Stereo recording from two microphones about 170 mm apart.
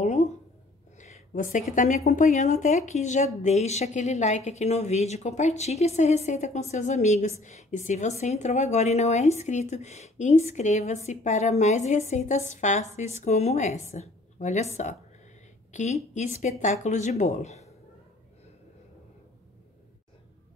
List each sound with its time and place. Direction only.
0.0 s a sound: 40° left (ahead or behind)
0.9 s a woman's voice: 45° left (ahead or behind)
15.7 s a woman's voice: 45° left (ahead or behind)